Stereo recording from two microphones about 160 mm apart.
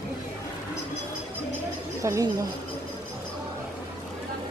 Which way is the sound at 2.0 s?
20° right (ahead or behind).